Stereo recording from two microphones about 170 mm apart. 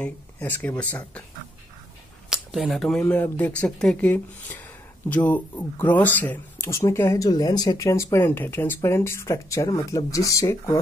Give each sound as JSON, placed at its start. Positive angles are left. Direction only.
{"t": 0.0, "sound": "speech", "side_deg": 10}
{"t": 2.2, "sound": "a sound", "side_deg": -5}
{"t": 3.0, "sound": "speech", "side_deg": 10}